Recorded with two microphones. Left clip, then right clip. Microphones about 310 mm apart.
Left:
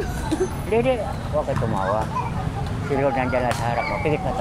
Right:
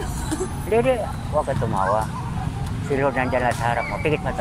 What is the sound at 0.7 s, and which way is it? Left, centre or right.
Speech, right.